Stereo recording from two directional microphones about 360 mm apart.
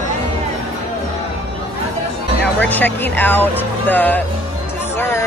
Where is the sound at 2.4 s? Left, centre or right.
Centre.